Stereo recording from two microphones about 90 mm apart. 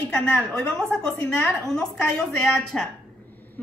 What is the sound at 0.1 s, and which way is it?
A woman's voice, 10° left (ahead or behind).